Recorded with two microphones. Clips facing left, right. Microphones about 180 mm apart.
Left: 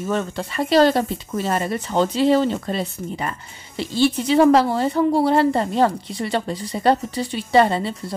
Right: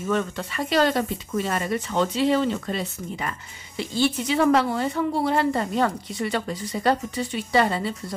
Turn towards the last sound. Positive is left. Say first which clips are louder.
# left 5 dB
turn(degrees=30)  # may be behind; listen again after turning